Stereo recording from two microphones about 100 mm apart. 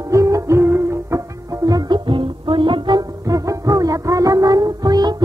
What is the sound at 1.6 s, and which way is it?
Music, 40° right (ahead or behind).